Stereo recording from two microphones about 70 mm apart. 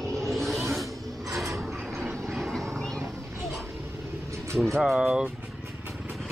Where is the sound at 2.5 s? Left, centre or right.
Centre.